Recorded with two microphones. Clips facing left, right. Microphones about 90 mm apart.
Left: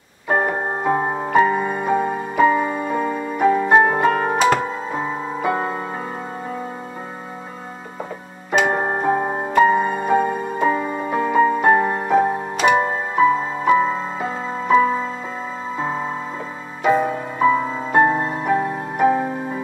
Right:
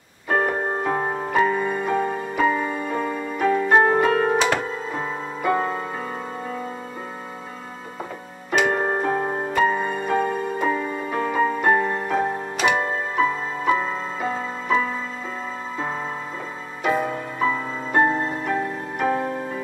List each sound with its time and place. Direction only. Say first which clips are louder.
0.3 s music: left 2 dB; 15° left (ahead or behind)
8.6 s music: left 2 dB; 20° left (ahead or behind)